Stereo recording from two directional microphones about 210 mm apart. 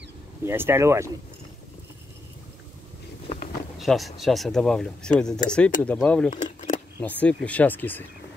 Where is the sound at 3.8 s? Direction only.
Centre (ahead or behind).